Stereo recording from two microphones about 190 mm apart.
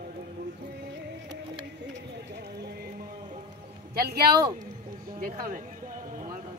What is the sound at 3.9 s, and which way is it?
Speech, 55° right (ahead or behind).